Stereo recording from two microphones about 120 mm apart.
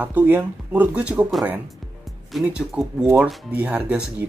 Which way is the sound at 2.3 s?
5° right (ahead or behind).